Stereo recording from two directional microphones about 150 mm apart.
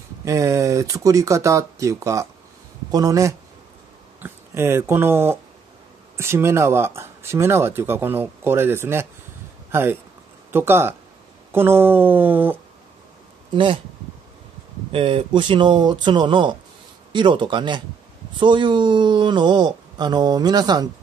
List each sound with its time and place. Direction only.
0.2 s speech: 20° right (ahead or behind)
13.5 s speech: 35° right (ahead or behind)
14.9 s speech: 35° right (ahead or behind)